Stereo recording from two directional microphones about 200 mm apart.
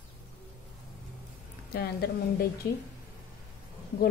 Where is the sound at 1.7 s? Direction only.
50° left (ahead or behind).